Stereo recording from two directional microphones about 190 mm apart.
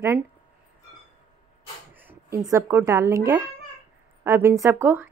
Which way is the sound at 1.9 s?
10° right (ahead or behind).